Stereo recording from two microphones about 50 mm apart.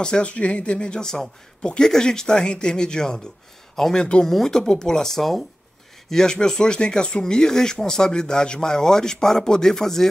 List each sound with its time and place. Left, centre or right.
0.0 s speech: centre